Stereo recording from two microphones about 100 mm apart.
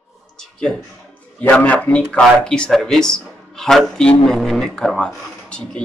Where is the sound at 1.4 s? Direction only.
15° left (ahead or behind).